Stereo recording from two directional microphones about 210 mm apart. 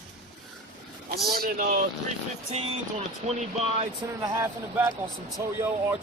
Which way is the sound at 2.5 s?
30° right (ahead or behind).